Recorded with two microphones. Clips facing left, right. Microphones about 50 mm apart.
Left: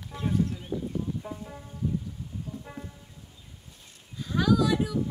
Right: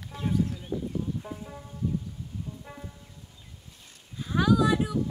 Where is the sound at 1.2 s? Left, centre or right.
Centre.